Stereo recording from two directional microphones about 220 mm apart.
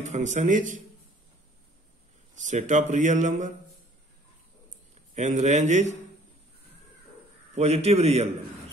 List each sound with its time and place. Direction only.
0.0 s speech: 35° right (ahead or behind)
2.3 s speech: 35° right (ahead or behind)
5.1 s speech: 35° right (ahead or behind)
7.5 s a man's voice: 30° right (ahead or behind)